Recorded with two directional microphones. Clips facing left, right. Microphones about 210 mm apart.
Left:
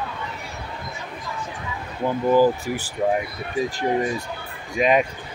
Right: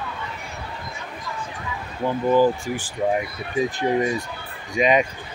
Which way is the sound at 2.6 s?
40° left (ahead or behind).